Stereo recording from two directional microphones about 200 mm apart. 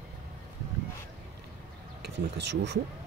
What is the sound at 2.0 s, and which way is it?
Speech, 60° right (ahead or behind).